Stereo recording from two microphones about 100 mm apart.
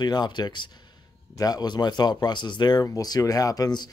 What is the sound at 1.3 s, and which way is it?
Speech, 40° left (ahead or behind).